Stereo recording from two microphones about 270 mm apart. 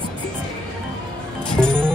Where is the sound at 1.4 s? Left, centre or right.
Centre.